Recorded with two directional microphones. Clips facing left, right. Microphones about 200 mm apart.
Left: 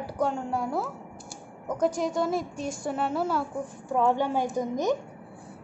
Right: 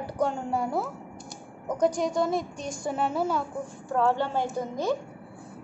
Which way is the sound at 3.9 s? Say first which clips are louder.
Left 1 dB; 15° left (ahead or behind).